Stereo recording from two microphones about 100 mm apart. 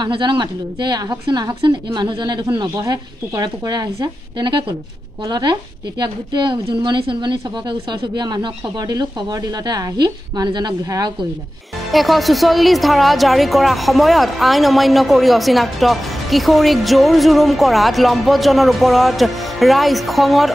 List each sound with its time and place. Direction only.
0.0 s speech: 50° right (ahead or behind)
11.9 s a woman's voice: centre (ahead or behind)